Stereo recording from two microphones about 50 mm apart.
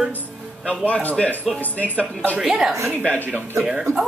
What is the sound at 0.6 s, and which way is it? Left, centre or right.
A man's voice, left.